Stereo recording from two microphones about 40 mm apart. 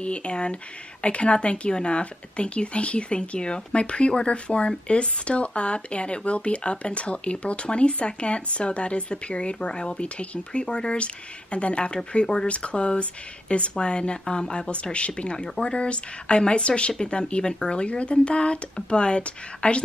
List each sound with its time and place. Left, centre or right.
0.0 s speech: left
14.5 s speech: left